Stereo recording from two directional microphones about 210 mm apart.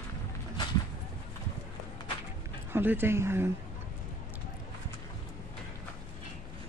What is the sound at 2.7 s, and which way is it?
Speech, 10° right (ahead or behind).